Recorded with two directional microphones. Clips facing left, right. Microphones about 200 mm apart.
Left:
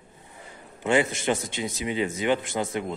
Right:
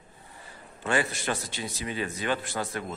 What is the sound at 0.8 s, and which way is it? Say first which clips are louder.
A man's voice: left 5 dB; 20° left (ahead or behind).